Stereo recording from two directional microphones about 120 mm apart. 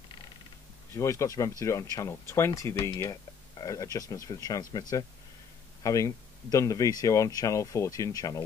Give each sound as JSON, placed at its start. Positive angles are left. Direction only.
{"t": 0.9, "sound": "speech", "side_deg": 25}